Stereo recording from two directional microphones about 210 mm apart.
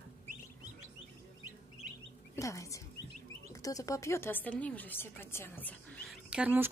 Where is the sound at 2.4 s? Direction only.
15° left (ahead or behind).